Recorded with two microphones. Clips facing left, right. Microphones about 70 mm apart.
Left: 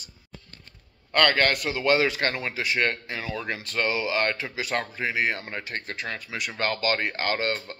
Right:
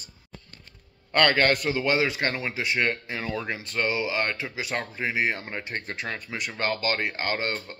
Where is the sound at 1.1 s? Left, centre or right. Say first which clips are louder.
Right 1 dB; centre.